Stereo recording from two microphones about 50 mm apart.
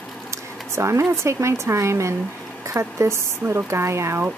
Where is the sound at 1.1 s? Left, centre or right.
Right.